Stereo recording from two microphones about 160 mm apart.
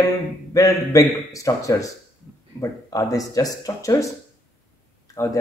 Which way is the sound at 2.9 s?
20° left (ahead or behind).